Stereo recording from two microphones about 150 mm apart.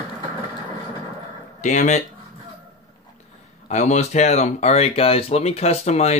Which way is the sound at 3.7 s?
50° left (ahead or behind).